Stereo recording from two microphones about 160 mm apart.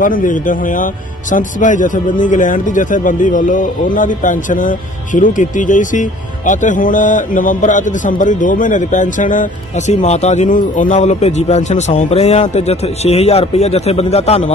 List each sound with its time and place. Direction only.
0.0 s a man's voice: 55° left (ahead or behind); by 14.5 s 40° left (ahead or behind)